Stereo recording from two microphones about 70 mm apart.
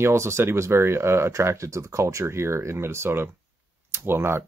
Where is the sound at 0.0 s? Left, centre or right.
Right.